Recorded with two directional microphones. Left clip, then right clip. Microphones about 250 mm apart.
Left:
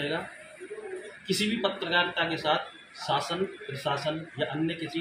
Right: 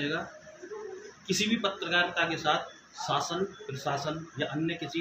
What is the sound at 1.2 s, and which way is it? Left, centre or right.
A man's voice, centre.